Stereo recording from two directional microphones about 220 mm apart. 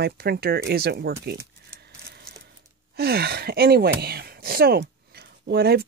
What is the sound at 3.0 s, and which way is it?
Speech, 45° right (ahead or behind).